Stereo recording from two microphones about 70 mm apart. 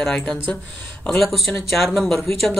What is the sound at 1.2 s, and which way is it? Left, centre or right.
Speech, centre.